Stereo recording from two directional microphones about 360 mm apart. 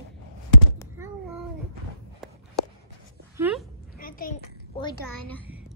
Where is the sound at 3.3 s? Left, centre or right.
Centre.